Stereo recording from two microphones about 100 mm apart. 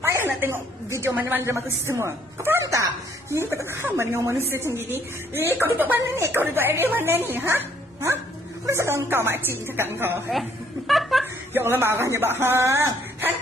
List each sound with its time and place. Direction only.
0.4 s a woman's voice: 25° right (ahead or behind)
10.9 s laughter: centre (ahead or behind)
11.5 s a woman's voice: 25° right (ahead or behind)